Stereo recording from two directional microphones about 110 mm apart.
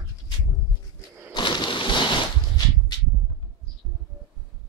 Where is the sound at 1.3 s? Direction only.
45° left (ahead or behind).